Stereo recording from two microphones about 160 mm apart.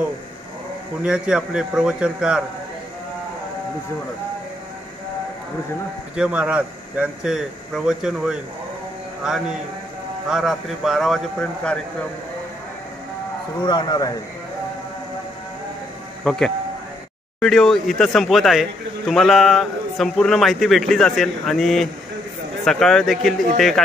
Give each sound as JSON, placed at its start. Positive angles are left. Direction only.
{"t": 1.0, "sound": "speech", "side_deg": -5}
{"t": 6.1, "sound": "speech", "side_deg": -5}
{"t": 10.2, "sound": "speech", "side_deg": 0}
{"t": 13.6, "sound": "speech", "side_deg": 25}
{"t": 16.3, "sound": "speech", "side_deg": 5}